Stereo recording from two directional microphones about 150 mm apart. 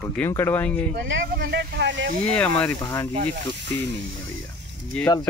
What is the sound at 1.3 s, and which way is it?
Speech, 90° right.